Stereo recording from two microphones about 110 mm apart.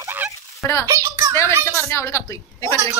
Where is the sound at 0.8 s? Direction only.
25° right (ahead or behind).